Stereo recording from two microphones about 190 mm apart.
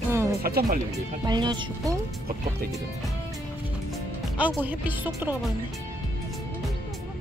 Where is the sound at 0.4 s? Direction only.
55° right (ahead or behind).